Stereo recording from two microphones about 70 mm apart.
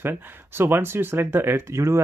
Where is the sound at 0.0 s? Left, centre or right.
Right.